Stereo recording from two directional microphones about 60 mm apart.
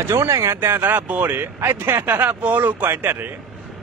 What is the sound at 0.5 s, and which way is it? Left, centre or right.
Speech, right.